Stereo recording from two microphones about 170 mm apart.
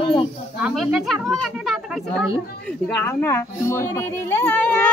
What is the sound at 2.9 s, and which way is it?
Speech, 10° left (ahead or behind).